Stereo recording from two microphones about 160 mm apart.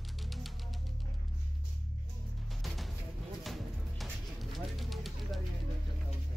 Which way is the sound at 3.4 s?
Centre (ahead or behind).